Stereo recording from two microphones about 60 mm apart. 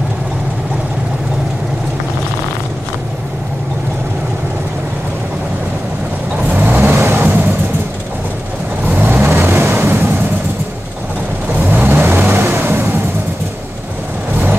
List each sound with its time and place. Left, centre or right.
6.6 s vehicle: right
8.9 s vehicle: right
11.7 s vehicle: right